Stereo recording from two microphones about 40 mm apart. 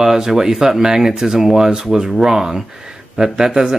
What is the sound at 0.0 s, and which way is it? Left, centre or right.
Speech, centre.